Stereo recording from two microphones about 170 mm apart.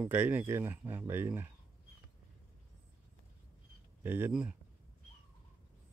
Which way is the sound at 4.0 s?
10° right (ahead or behind).